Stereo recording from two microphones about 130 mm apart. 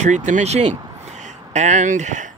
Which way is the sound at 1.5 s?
70° right (ahead or behind).